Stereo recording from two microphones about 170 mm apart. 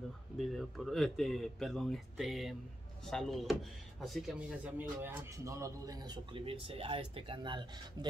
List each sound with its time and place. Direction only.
0.4 s speech: centre (ahead or behind); by 8.1 s 25° right (ahead or behind)